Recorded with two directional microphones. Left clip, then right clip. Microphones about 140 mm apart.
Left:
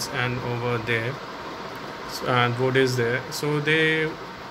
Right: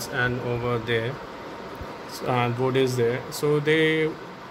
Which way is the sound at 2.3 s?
15° right (ahead or behind).